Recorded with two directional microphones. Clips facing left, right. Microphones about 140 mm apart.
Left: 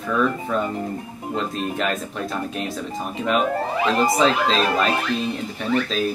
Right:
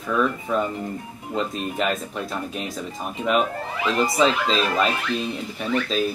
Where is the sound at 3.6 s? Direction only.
40° left (ahead or behind).